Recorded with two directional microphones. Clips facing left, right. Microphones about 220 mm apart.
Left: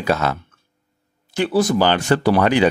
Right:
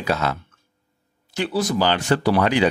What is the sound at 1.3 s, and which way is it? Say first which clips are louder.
Speech: left 5 dB; 50° left (ahead or behind).